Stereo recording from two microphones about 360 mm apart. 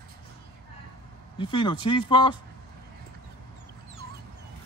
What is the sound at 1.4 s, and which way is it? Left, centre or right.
A man's voice, centre.